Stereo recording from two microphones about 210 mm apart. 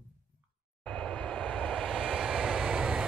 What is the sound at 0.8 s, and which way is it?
Vehicle, 5° left (ahead or behind).